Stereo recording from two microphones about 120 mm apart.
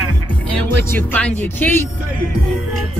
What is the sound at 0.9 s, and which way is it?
Speech, 10° left (ahead or behind).